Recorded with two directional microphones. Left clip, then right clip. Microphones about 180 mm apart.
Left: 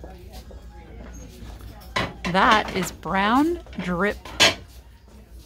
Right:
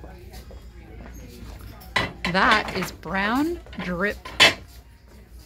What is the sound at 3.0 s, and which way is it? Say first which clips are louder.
Speech: left 4 dB; 20° left (ahead or behind).